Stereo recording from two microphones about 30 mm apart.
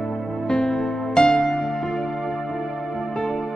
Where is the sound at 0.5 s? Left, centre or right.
Left.